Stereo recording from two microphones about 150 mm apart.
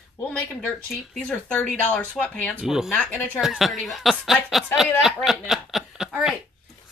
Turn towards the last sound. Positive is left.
turn(degrees=-5)  # may be behind; listen again after turning